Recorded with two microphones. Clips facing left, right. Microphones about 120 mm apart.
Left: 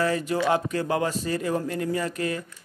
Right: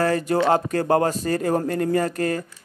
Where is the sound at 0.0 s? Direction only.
45° right (ahead or behind).